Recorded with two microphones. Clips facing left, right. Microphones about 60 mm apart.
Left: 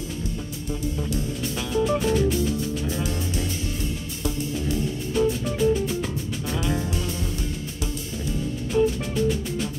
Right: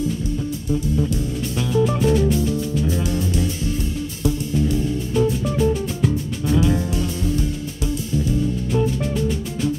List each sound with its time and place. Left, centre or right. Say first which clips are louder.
0.7 s music: right 6 dB; centre
8.7 s music: left 1 dB; centre